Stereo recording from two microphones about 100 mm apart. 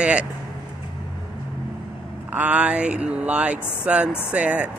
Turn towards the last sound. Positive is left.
turn(degrees=-15)  # may be behind; listen again after turning